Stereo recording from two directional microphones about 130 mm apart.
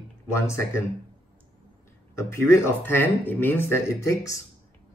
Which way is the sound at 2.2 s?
20° left (ahead or behind).